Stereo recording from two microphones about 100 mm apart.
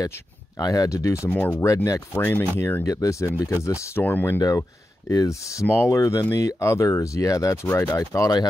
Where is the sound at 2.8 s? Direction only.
35° left (ahead or behind).